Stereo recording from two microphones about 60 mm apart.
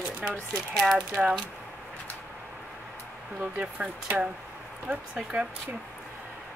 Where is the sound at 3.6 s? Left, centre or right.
Right.